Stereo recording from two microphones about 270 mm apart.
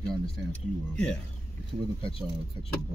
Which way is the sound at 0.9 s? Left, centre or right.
Centre.